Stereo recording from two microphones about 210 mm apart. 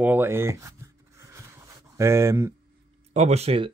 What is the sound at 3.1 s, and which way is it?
Speech, 30° right (ahead or behind).